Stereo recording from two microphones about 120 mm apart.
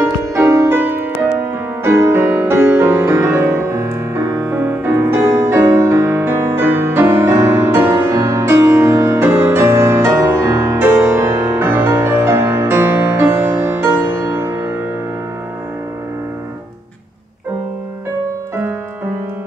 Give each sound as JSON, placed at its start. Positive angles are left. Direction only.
{"t": 0.3, "sound": "music", "side_deg": -25}